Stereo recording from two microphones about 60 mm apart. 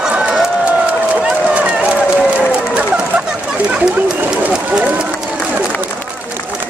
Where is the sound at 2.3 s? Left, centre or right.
Centre.